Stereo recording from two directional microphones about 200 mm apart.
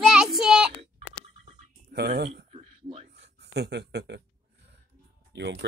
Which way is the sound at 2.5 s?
30° right (ahead or behind).